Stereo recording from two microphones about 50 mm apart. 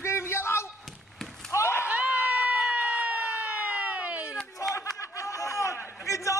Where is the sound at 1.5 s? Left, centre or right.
Left.